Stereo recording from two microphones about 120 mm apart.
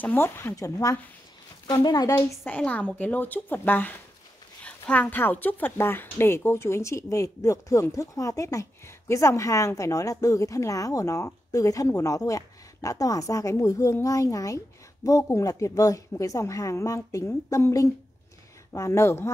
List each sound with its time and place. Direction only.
0.0 s speech: 15° left (ahead or behind)
2.1 s a woman's voice: 15° left (ahead or behind)